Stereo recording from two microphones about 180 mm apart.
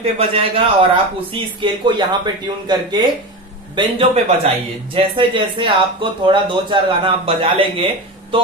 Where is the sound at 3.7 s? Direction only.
35° right (ahead or behind).